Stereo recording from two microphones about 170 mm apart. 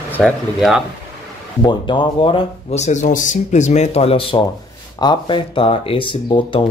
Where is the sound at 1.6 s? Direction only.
25° left (ahead or behind).